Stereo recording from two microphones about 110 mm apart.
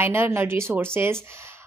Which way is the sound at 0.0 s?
20° right (ahead or behind).